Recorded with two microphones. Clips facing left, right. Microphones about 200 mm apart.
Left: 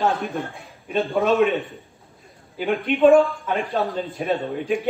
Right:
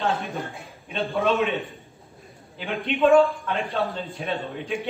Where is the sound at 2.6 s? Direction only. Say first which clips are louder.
Left 5 dB; 50° left (ahead or behind).